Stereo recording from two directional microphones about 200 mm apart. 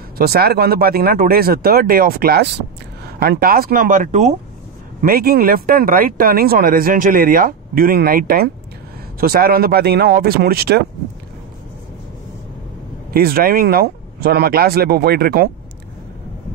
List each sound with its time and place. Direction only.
0.2 s speech: 50° right (ahead or behind)
5.0 s speech: 50° right (ahead or behind)
13.1 s speech: 50° right (ahead or behind)